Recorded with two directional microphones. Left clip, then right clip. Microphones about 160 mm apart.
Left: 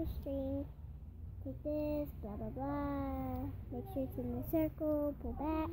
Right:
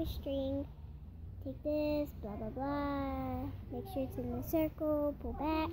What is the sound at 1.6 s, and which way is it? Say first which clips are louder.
A child's voice: right 4 dB; 5° left (ahead or behind).